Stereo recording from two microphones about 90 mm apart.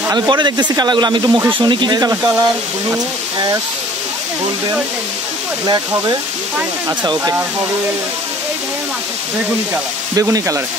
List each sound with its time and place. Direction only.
0.1 s speech: 50° right (ahead or behind)
2.0 s speech: 40° right (ahead or behind)
10.1 s speech: 35° right (ahead or behind)